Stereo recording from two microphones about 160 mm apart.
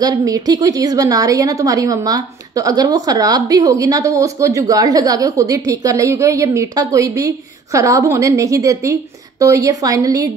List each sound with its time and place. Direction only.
0.0 s a woman's voice: 20° right (ahead or behind)